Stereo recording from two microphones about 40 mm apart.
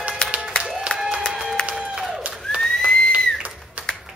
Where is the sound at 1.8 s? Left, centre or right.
Centre.